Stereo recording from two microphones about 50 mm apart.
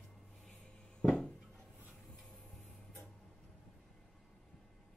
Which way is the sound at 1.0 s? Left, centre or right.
Left.